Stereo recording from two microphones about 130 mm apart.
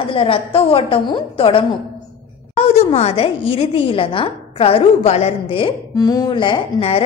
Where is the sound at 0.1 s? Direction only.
45° left (ahead or behind).